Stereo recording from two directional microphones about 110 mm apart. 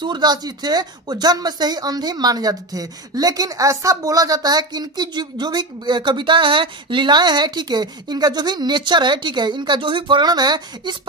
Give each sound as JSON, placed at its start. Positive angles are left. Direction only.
{"t": 0.0, "sound": "speech", "side_deg": -40}